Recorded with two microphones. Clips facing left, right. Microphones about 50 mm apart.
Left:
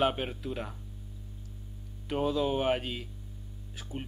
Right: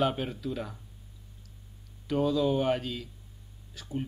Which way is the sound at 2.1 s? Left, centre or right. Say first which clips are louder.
Right 2 dB; centre.